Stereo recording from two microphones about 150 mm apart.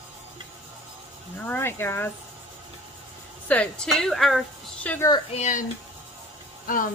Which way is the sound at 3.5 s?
5° left (ahead or behind).